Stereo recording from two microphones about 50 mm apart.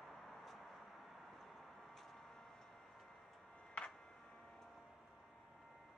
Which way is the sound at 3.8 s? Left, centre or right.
Centre.